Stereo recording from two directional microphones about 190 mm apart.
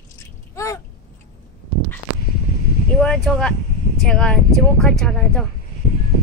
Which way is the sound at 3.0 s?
5° left (ahead or behind).